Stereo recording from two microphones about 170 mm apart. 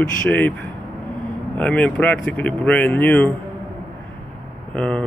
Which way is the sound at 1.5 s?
5° left (ahead or behind).